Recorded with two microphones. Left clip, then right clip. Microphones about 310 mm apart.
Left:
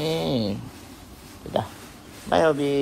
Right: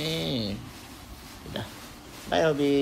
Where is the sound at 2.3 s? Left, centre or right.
Centre.